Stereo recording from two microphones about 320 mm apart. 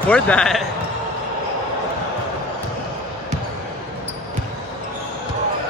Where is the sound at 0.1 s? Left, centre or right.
Centre.